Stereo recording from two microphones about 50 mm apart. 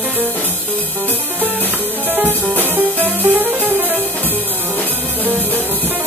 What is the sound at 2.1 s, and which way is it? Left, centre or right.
Music, right.